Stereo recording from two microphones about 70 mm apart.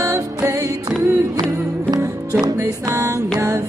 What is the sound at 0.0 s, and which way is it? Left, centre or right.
Music, right.